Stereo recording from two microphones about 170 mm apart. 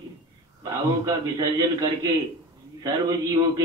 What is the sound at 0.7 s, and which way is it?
A man's voice, 20° right (ahead or behind).